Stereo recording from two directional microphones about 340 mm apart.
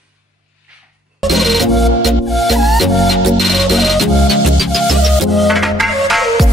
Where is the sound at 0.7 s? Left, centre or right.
Centre.